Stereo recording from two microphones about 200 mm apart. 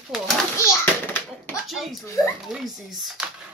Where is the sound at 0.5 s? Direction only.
10° left (ahead or behind).